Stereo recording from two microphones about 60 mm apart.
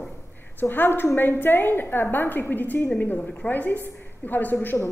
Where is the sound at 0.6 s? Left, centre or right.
Left.